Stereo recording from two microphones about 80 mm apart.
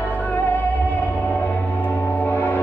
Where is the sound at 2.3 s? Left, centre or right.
Left.